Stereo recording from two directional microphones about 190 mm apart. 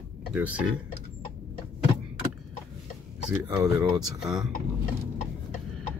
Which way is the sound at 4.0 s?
Centre (ahead or behind).